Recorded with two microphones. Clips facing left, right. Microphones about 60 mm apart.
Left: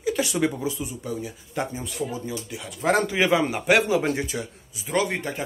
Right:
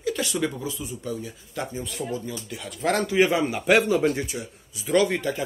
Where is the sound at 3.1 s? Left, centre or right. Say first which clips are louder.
Right 1 dB; left.